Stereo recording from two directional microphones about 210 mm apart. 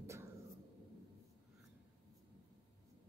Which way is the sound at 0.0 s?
15° right (ahead or behind).